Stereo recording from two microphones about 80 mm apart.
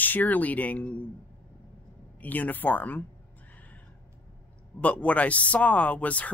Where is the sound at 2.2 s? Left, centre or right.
Left.